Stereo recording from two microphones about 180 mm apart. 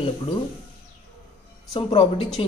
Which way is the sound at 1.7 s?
30° left (ahead or behind).